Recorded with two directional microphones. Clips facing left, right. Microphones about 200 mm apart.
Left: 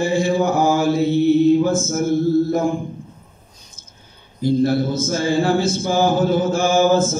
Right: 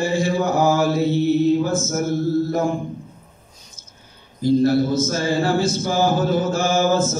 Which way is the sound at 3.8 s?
55° left (ahead or behind).